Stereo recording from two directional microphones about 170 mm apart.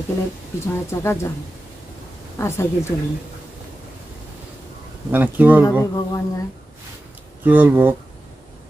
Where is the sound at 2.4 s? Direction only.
15° left (ahead or behind).